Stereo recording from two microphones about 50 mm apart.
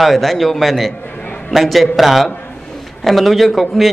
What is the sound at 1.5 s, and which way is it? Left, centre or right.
A man's voice, centre.